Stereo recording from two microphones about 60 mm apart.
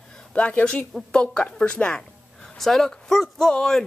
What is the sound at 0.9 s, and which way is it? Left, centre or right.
Speech, centre.